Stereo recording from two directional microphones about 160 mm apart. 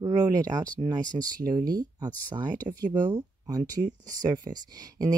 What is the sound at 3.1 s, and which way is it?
Speech, 25° right (ahead or behind).